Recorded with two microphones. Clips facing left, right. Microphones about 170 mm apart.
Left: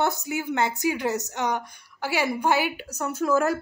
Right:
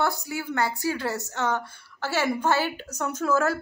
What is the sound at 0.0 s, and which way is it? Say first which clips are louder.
A woman's voice: left 2 dB; 20° left (ahead or behind).